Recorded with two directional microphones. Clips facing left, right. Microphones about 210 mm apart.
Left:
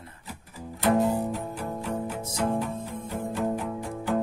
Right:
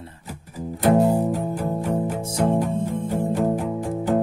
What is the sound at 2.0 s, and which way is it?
Music, 30° right (ahead or behind).